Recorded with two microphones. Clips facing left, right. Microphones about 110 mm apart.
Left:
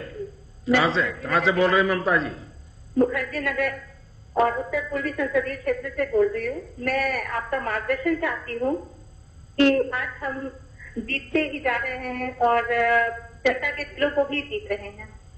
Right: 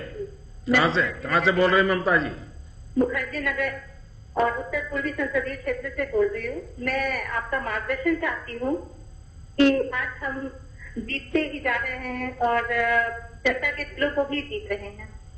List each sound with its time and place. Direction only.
0.7 s a man's voice: centre (ahead or behind)
3.0 s speech: 50° left (ahead or behind)